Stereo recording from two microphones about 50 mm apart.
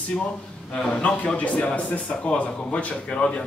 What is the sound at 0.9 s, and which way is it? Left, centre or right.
Speech, left.